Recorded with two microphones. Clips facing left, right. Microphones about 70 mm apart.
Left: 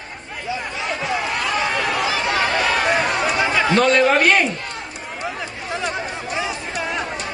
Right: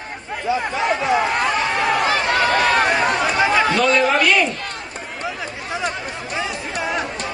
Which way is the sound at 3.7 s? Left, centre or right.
Left.